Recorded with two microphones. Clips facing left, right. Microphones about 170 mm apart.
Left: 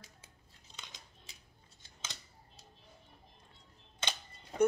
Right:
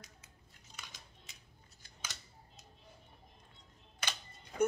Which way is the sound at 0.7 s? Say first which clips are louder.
Even; 20° left (ahead or behind).